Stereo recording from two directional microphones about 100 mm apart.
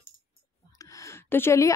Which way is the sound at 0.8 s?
35° left (ahead or behind).